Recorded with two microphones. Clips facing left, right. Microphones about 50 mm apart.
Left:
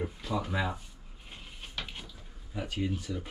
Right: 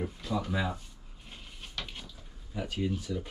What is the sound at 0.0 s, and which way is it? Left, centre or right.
Speech, centre.